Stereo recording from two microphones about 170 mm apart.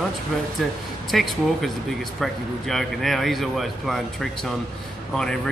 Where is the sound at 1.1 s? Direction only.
Centre (ahead or behind).